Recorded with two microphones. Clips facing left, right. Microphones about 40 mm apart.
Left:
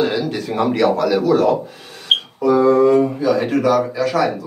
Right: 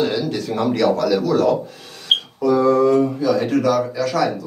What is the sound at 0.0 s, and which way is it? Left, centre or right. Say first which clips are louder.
Speech: left 1 dB; centre.